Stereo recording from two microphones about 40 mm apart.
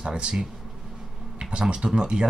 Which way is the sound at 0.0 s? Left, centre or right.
Right.